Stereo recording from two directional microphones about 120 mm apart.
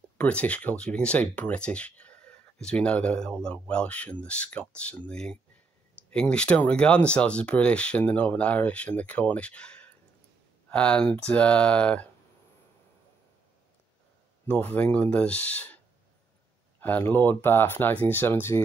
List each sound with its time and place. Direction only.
0.2 s speech: 10° left (ahead or behind)
14.5 s speech: 15° left (ahead or behind)
16.8 s speech: 15° left (ahead or behind)